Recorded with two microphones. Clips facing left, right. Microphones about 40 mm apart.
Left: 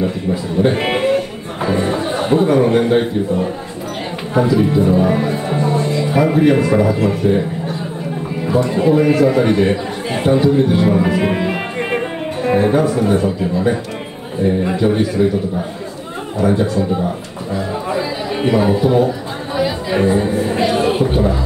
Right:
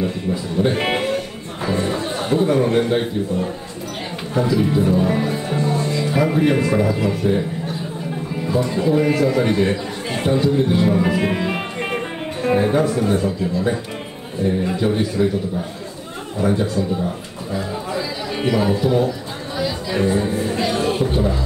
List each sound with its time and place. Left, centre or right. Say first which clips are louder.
0.0 s a man's voice: left 4 dB; centre
1.0 s a sound: left 6 dB; centre
4.5 s a man's voice: left 3 dB; centre
11.3 s music: left 4 dB; centre
12.4 s a man's voice: left 3 dB; centre
14.5 s a man's voice: left 4 dB; centre
16.7 s speech: left 4 dB; left
17.8 s chatter: left 5 dB; centre
20.4 s speech: left 5 dB; left